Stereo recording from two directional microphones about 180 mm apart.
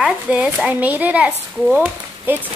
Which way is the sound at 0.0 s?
5° right (ahead or behind).